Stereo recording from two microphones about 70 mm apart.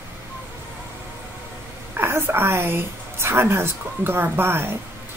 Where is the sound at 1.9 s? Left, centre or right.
Right.